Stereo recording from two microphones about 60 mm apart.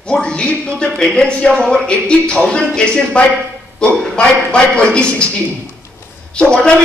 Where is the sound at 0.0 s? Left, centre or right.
Centre.